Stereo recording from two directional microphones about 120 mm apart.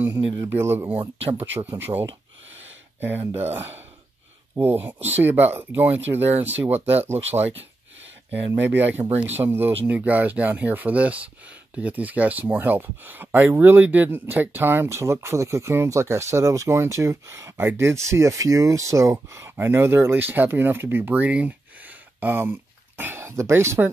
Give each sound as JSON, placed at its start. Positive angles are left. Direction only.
{"t": 0.4, "sound": "speech", "side_deg": -20}
{"t": 4.6, "sound": "speech", "side_deg": -15}
{"t": 8.5, "sound": "speech", "side_deg": -20}